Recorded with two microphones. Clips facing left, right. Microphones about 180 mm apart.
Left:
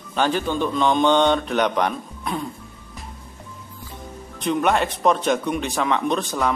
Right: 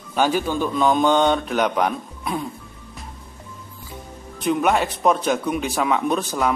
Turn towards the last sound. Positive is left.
turn(degrees=-5)  # may be behind; listen again after turning